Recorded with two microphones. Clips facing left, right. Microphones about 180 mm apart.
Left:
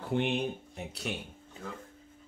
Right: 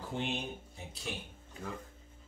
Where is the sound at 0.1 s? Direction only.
60° left (ahead or behind).